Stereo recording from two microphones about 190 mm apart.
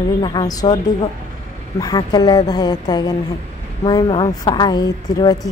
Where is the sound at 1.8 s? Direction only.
20° left (ahead or behind).